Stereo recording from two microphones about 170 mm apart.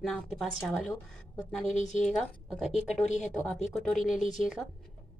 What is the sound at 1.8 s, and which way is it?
Speech, 45° left (ahead or behind).